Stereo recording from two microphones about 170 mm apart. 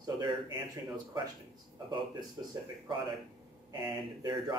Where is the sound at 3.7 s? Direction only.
25° right (ahead or behind).